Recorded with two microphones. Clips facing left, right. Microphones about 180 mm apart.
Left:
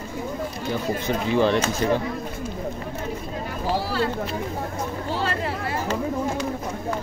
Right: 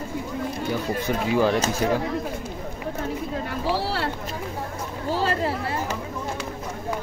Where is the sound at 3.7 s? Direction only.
75° right (ahead or behind).